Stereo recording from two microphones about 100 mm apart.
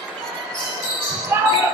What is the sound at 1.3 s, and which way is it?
Basketball bounce, 25° right (ahead or behind).